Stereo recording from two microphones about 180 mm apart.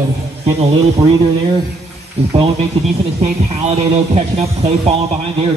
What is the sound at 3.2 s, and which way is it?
Speech, 40° right (ahead or behind).